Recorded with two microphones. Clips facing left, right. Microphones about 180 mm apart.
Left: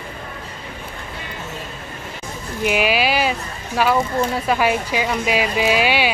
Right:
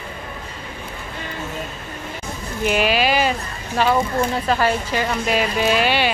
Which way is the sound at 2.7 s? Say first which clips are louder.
Even; 10° left (ahead or behind).